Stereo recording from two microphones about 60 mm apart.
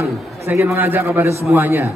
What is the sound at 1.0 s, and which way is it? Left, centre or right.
Speech, right.